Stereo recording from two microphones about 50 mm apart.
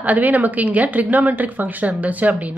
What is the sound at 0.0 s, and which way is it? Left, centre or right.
A woman's voice, right.